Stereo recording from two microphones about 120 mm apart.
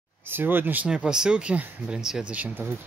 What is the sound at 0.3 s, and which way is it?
Speech, 15° right (ahead or behind).